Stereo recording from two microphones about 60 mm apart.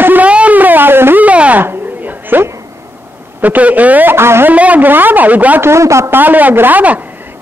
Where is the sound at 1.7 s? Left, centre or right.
Right.